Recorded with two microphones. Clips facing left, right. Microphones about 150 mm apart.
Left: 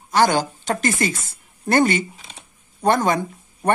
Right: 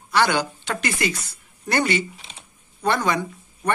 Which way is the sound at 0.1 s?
45° left (ahead or behind).